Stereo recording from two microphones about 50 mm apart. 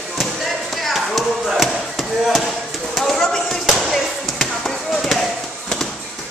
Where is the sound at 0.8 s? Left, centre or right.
Centre.